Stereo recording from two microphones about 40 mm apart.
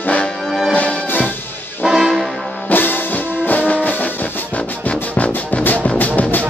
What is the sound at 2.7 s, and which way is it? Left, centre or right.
Music, left.